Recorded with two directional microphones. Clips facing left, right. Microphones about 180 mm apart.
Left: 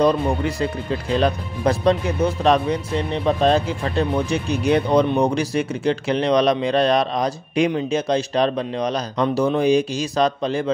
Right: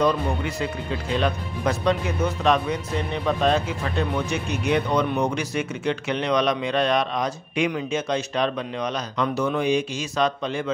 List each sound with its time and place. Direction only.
0.0 s speech: 35° left (ahead or behind)